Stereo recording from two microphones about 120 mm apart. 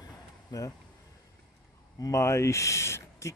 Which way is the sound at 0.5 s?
30° left (ahead or behind).